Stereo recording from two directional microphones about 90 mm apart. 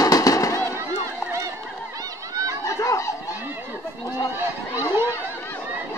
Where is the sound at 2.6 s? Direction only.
35° left (ahead or behind).